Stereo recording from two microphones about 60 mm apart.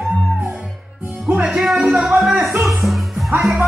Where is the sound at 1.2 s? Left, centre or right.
Centre.